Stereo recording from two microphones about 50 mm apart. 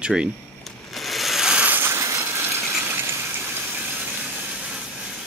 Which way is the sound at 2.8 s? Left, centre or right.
Right.